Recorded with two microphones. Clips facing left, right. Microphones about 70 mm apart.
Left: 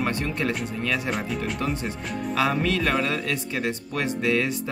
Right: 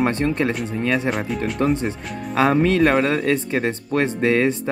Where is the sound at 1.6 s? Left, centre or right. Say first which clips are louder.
Right 7 dB; right.